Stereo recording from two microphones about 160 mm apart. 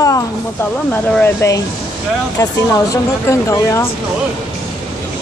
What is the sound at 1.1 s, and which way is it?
Speech, 10° left (ahead or behind).